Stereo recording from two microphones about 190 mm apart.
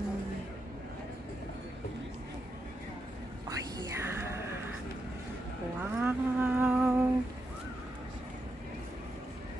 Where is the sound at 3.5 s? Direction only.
15° right (ahead or behind).